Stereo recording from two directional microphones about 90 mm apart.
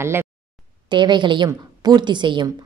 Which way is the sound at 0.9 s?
60° right (ahead or behind).